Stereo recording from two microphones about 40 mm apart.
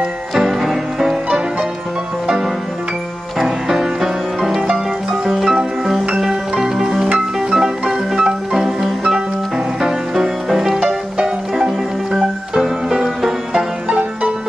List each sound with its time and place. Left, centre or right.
0.6 s music: centre
2.2 s music: centre
6.6 s music: centre
8.6 s music: centre